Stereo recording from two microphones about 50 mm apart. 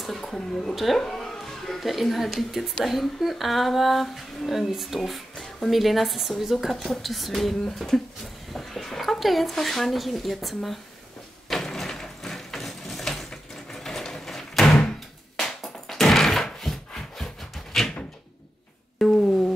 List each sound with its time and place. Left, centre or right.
0.0 s a woman's voice: centre
0.7 s music: centre
1.8 s speech: centre
11.4 s a sound: centre
18.9 s music: centre